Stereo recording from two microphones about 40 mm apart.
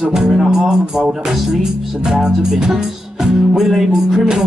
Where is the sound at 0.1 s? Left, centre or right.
Centre.